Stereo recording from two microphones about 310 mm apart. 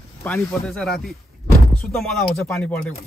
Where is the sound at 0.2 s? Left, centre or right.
Centre.